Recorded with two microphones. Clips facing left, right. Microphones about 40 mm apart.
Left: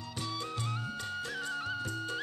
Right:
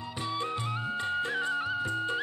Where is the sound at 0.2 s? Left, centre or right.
Right.